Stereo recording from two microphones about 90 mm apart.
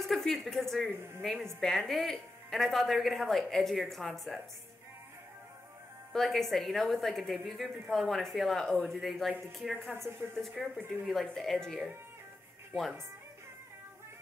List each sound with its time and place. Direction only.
0.0 s a woman's voice: 5° left (ahead or behind)
0.9 s a woman's voice: 25° right (ahead or behind)
1.2 s a woman's voice: centre (ahead or behind)
6.1 s a woman's voice: centre (ahead or behind)
9.9 s a woman's voice: 30° right (ahead or behind)
10.4 s a woman's voice: centre (ahead or behind)